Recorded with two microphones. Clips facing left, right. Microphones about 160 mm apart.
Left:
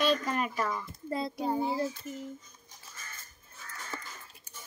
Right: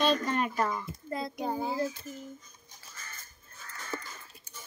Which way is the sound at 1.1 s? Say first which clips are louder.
Left 2 dB; 30° left (ahead or behind).